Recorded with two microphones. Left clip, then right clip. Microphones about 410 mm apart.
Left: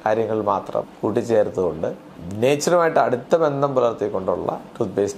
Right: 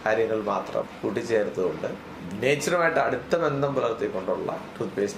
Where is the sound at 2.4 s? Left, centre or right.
Left.